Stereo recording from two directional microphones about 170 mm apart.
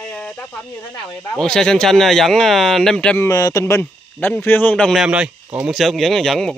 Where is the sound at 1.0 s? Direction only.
20° left (ahead or behind).